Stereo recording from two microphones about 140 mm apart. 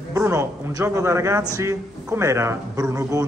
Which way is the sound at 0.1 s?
20° right (ahead or behind).